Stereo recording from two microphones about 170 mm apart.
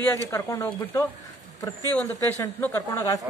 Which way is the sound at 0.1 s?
15° left (ahead or behind).